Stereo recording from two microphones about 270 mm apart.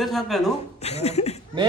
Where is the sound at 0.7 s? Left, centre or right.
Left.